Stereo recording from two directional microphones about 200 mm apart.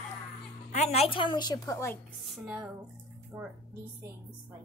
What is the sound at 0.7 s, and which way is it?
A woman's voice, 30° left (ahead or behind).